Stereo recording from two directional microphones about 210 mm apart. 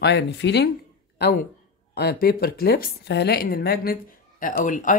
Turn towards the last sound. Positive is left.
turn(degrees=40)  # may be behind; listen again after turning